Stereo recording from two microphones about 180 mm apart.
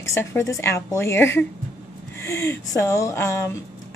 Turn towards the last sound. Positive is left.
turn(degrees=15)  # may be behind; listen again after turning